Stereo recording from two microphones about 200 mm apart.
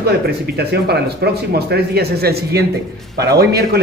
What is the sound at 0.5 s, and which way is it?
A man's voice, 55° right (ahead or behind).